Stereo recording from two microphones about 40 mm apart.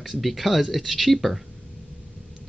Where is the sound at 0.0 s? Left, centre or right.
Centre.